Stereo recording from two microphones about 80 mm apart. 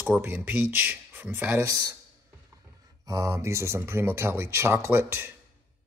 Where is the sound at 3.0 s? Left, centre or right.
Right.